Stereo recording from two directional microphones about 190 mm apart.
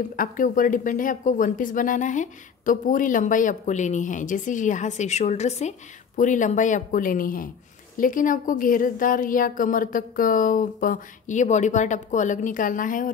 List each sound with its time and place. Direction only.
0.1 s speech: 45° left (ahead or behind)